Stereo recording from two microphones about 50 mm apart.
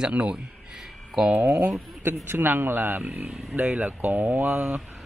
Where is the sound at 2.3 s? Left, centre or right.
Right.